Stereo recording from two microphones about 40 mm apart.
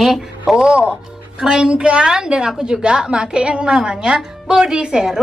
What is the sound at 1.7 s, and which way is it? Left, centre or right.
A woman's voice, right.